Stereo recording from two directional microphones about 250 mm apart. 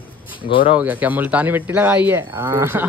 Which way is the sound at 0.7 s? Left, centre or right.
Centre.